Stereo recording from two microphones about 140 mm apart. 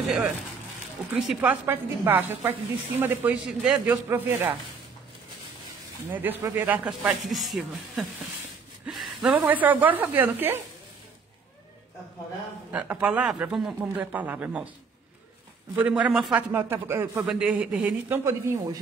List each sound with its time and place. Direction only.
1.1 s speech: centre (ahead or behind)
1.4 s speech: 15° right (ahead or behind)
6.0 s speech: 15° right (ahead or behind)
7.0 s speech: 5° right (ahead or behind)
12.7 s speech: 10° right (ahead or behind)
15.7 s speech: 10° right (ahead or behind)
16.5 s speech: 15° right (ahead or behind)